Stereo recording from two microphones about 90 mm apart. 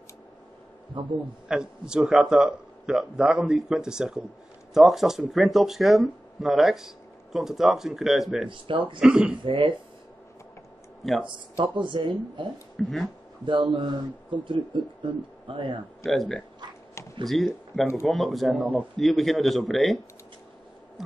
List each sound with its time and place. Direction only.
1.0 s speech: 70° right (ahead or behind)
1.5 s a man's voice: 10° right (ahead or behind)
8.5 s speech: 70° right (ahead or behind)
9.0 s speech: 10° right (ahead or behind)
9.4 s speech: 65° right (ahead or behind)
11.2 s speech: 65° right (ahead or behind)
12.8 s a man's voice: 5° left (ahead or behind)
13.5 s speech: 65° right (ahead or behind)
16.1 s a man's voice: 5° left (ahead or behind)